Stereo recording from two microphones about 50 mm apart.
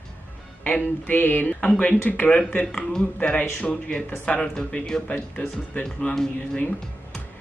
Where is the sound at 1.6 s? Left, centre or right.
Left.